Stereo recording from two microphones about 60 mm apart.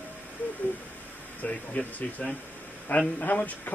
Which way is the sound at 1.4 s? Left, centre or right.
Left.